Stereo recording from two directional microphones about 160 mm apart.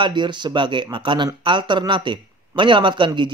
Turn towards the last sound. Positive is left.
turn(degrees=-30)  # may be behind; listen again after turning